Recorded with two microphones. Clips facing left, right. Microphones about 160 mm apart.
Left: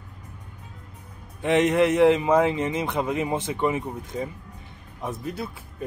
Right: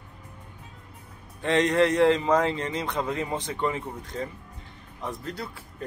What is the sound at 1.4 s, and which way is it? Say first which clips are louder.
Speech: left 2 dB; 20° left (ahead or behind).